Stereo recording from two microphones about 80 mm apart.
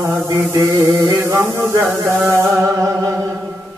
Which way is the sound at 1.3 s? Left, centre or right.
Right.